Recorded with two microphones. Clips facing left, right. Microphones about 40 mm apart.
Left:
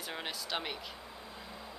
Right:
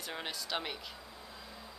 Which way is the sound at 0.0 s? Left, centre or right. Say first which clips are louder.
Left 1 dB; centre.